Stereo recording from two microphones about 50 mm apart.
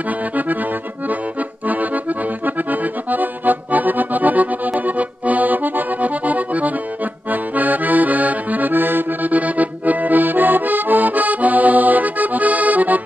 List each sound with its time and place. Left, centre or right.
0.4 s accordion: right